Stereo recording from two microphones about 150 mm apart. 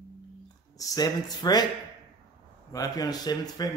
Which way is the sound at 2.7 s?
25° left (ahead or behind).